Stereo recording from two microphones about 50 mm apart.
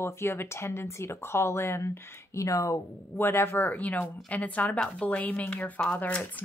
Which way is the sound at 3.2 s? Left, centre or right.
Left.